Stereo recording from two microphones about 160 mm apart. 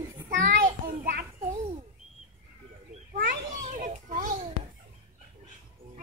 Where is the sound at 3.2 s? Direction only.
55° right (ahead or behind).